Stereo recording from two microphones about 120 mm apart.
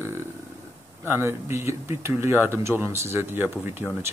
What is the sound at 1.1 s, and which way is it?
Speech, 20° right (ahead or behind).